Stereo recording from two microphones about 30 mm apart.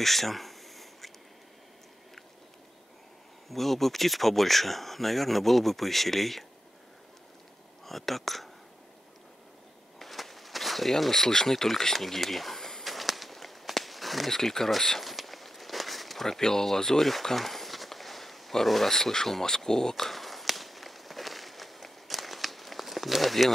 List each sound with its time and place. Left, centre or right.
0.0 s a sound: centre
3.4 s speech: centre
7.8 s speech: centre
9.9 s speech: centre
12.8 s walk: centre
14.3 s speech: centre
15.0 s a sound: centre
16.3 s speech: centre
19.4 s walk: centre